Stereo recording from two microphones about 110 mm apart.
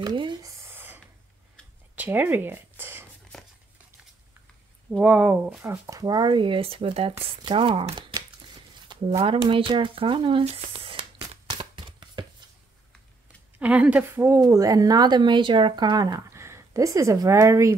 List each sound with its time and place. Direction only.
0.1 s speech: 45° right (ahead or behind)
0.4 s a sound: 30° right (ahead or behind)
2.0 s speech: 15° right (ahead or behind)
5.0 s speech: 15° right (ahead or behind)
5.6 s speech: 30° right (ahead or behind); by 8.2 s 45° right (ahead or behind)
8.7 s shuffling cards: 45° right (ahead or behind)
9.5 s speech: 50° right (ahead or behind)
10.4 s a sound: 60° right (ahead or behind); by 12.3 s 45° right (ahead or behind)
13.6 s speech: 10° right (ahead or behind)
14.4 s speech: 30° right (ahead or behind)
16.3 s speech: 25° right (ahead or behind)